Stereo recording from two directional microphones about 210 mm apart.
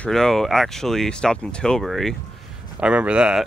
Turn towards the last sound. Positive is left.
turn(degrees=-5)  # may be behind; listen again after turning